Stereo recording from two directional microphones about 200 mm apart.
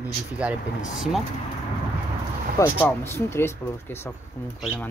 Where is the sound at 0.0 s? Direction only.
5° right (ahead or behind).